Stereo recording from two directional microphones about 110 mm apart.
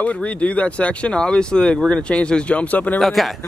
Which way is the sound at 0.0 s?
10° left (ahead or behind).